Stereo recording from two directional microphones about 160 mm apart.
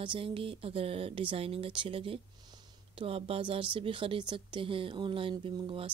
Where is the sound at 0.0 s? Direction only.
30° right (ahead or behind).